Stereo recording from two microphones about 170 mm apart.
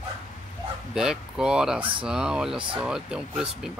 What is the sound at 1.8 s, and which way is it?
Speech, 30° right (ahead or behind).